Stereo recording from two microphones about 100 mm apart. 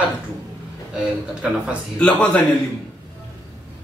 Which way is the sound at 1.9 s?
10° left (ahead or behind).